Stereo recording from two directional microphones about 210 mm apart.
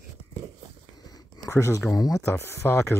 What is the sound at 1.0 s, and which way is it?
Speech, 20° left (ahead or behind).